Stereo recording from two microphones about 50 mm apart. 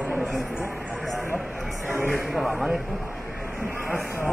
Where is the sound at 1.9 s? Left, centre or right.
Right.